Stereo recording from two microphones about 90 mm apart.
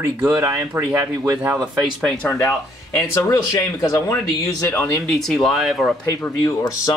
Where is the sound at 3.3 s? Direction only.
35° left (ahead or behind).